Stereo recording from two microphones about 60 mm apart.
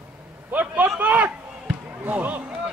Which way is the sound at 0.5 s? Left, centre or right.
Right.